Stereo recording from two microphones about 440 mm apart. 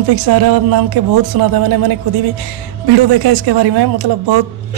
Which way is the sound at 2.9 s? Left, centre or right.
Right.